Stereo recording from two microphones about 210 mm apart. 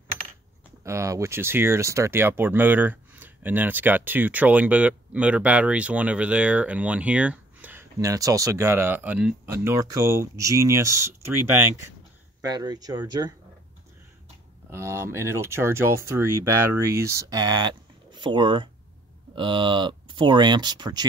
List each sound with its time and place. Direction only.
0.8 s speech: 15° right (ahead or behind)
14.7 s speech: 15° right (ahead or behind)